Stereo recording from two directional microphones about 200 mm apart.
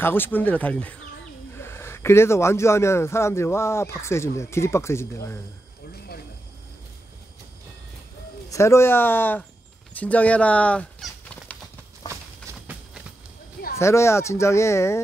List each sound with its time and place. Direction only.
0.0 s speech: 10° left (ahead or behind)
8.5 s speech: 15° left (ahead or behind)
9.9 s fowl: 5° left (ahead or behind)
12.1 s a sound: 10° right (ahead or behind)
13.7 s speech: 15° left (ahead or behind)